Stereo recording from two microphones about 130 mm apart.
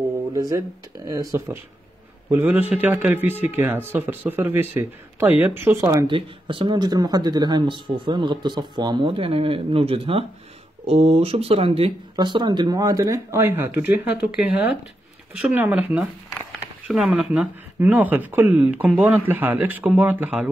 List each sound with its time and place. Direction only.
0.3 s speech: 30° right (ahead or behind)
6.0 s speech: 40° right (ahead or behind)
12.2 s speech: 35° right (ahead or behind); by 16.1 s 10° right (ahead or behind)
16.3 s a sound: 5° right (ahead or behind)
17.7 s speech: 10° right (ahead or behind)